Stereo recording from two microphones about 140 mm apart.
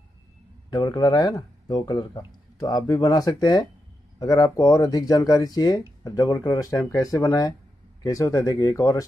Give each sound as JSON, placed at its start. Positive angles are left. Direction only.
{"t": 0.7, "sound": "speech", "side_deg": 30}